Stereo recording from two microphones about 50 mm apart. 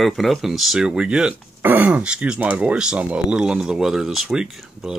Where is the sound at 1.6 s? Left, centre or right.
Right; by 4.9 s centre.